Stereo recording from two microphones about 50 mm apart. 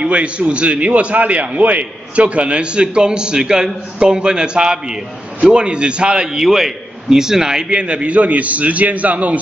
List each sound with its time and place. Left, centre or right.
0.0 s a man's voice: right